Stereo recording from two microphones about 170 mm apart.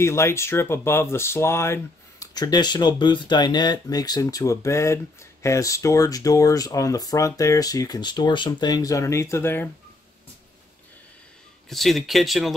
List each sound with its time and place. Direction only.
0.0 s speech: 15° left (ahead or behind)
11.7 s speech: centre (ahead or behind)